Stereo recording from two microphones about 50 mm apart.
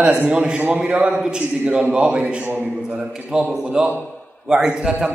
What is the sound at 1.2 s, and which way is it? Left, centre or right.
A man's voice, centre.